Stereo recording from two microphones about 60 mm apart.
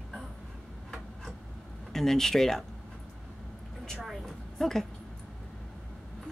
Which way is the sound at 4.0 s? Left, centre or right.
Centre.